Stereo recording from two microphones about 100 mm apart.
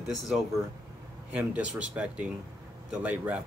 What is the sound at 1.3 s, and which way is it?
Speech, 10° right (ahead or behind).